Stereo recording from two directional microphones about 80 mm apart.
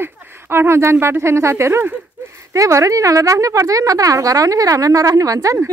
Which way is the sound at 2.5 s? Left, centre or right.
Right.